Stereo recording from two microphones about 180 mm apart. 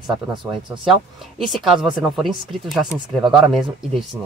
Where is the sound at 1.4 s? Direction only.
Centre (ahead or behind).